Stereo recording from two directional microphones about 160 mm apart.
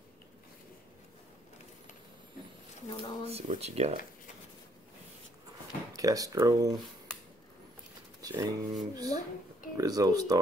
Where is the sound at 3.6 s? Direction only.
40° right (ahead or behind).